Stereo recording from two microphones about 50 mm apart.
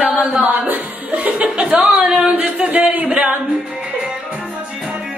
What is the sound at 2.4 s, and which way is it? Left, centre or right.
Speech, right.